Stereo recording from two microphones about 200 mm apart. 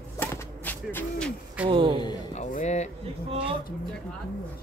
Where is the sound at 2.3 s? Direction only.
35° left (ahead or behind).